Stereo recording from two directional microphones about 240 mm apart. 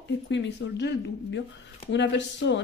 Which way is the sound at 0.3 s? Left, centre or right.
Left.